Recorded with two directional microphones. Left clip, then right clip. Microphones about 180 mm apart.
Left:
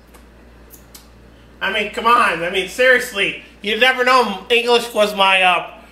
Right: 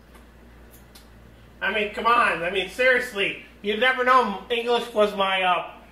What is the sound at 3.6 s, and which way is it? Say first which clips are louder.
A man's voice: left 6 dB; 25° left (ahead or behind).